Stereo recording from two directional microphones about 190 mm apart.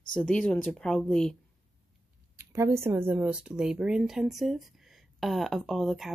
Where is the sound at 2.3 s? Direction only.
15° right (ahead or behind).